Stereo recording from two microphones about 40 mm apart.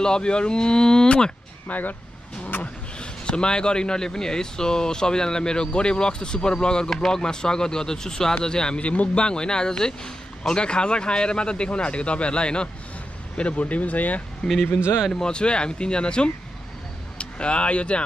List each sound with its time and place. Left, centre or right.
0.0 s speech: left
1.7 s speech: left
2.4 s vehicle: left
3.0 s speech: left
8.8 s speech: left
14.4 s speech: centre
15.1 s speech: left